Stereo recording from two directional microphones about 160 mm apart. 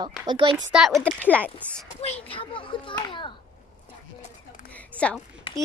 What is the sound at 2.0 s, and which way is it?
A child's voice, 40° left (ahead or behind).